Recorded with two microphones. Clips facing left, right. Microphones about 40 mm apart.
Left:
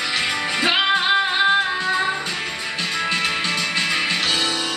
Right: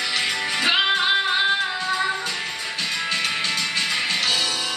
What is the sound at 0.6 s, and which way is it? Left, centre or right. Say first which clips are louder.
Music: left 1 dB; centre.